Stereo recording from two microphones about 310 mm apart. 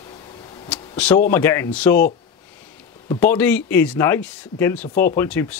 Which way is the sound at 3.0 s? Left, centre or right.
Centre.